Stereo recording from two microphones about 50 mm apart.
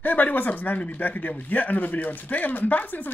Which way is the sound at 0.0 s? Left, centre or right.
Left.